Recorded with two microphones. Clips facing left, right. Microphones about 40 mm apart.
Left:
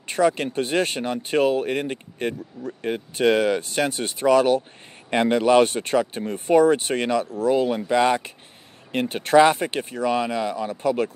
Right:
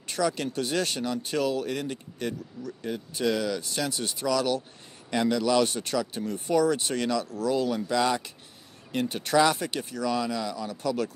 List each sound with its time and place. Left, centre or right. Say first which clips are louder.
0.1 s speech: left 7 dB; left